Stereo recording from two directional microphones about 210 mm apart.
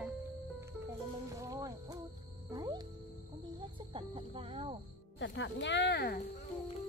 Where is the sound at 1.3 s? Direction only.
15° right (ahead or behind).